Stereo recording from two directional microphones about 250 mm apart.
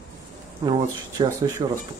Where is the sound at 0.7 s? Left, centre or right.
Centre.